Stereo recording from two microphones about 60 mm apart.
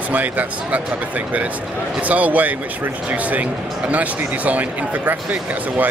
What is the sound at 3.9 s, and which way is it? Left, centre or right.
Speech, right.